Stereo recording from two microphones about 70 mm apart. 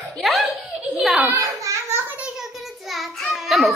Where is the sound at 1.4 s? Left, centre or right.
Right.